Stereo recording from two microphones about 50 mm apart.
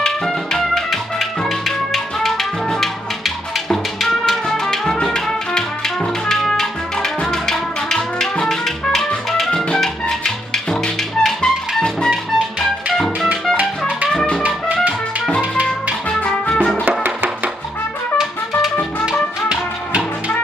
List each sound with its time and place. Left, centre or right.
0.2 s music: centre
12.9 s music: centre
16.1 s music: left